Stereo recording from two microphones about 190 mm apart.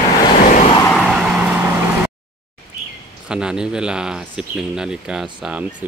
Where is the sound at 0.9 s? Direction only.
Centre (ahead or behind).